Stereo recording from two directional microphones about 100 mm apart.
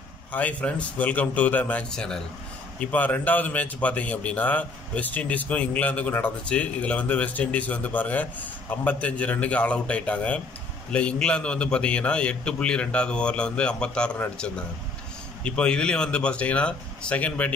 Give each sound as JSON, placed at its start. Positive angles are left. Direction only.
{"t": 0.3, "sound": "a man's voice", "side_deg": 15}